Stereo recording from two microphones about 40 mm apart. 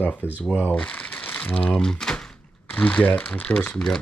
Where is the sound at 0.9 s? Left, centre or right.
Left.